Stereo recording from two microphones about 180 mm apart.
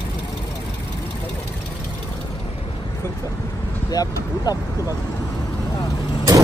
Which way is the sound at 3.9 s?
20° left (ahead or behind).